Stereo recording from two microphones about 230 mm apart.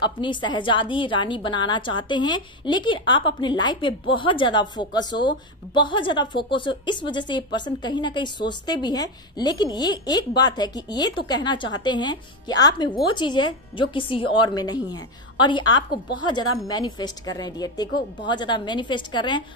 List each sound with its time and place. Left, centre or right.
0.0 s a woman's voice: left